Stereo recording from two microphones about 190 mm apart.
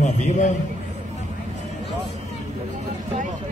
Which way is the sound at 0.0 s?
40° left (ahead or behind).